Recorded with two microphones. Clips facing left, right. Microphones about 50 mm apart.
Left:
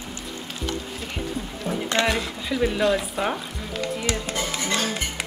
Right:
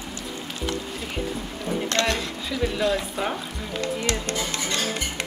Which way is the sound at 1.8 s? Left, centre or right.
Centre.